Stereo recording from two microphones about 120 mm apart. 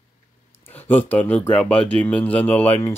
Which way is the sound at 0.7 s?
15° left (ahead or behind).